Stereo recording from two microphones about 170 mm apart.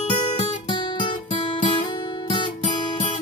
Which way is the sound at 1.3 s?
45° left (ahead or behind).